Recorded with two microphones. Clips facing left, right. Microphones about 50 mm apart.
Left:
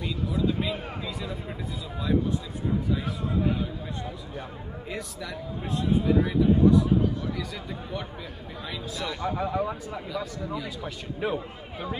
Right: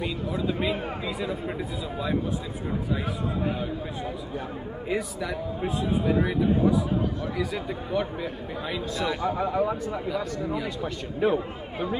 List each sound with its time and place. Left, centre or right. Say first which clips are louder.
0.0 s a man's voice: left 1 dB; centre
4.8 s speech: right 7 dB; centre
8.9 s speech: right 3 dB; centre